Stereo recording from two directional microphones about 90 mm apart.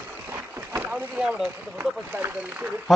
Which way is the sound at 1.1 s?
10° right (ahead or behind).